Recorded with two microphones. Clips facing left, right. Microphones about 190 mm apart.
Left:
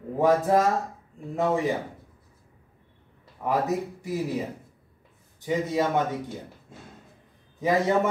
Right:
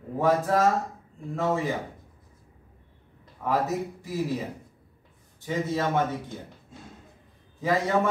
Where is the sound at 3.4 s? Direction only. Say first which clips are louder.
Left 1 dB; 15° left (ahead or behind).